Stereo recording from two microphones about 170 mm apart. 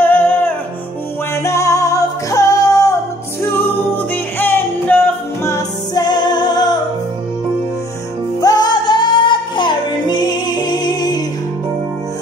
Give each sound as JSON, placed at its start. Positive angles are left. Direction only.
{"t": 0.0, "sound": "music", "side_deg": 10}
{"t": 8.4, "sound": "music", "side_deg": 25}